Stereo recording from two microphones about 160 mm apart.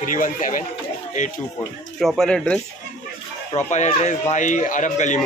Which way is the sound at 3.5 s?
45° left (ahead or behind).